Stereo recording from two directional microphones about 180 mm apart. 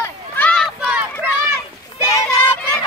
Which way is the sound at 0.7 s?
5° right (ahead or behind).